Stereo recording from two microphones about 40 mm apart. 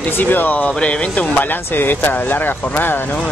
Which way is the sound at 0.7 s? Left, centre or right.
Left.